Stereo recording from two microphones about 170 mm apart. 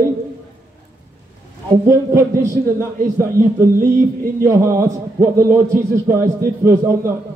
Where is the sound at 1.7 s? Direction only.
20° right (ahead or behind).